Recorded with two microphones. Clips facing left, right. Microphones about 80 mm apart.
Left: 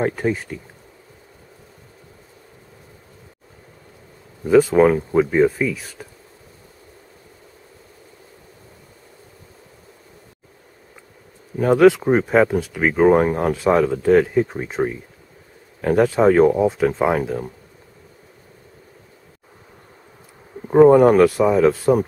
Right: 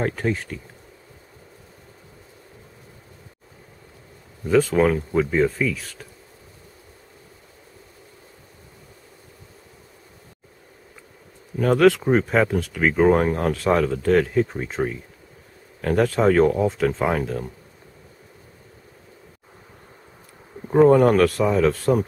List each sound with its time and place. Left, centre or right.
0.0 s speech: centre
4.5 s speech: centre
11.5 s speech: centre
20.6 s speech: centre